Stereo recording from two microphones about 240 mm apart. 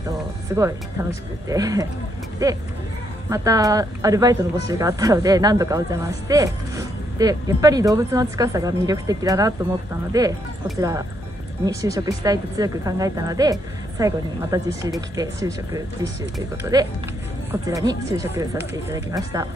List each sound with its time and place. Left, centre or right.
0.6 s speech: centre